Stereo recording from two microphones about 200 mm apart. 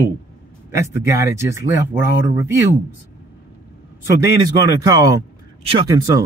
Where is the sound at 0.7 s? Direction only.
15° right (ahead or behind).